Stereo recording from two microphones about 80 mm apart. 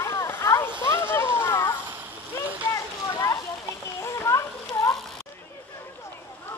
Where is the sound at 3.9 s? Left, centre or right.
Left.